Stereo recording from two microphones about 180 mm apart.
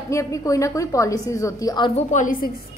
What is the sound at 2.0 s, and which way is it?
Speech, 45° left (ahead or behind).